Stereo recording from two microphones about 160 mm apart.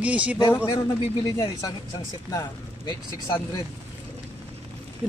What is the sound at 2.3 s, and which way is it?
Speech, 25° left (ahead or behind).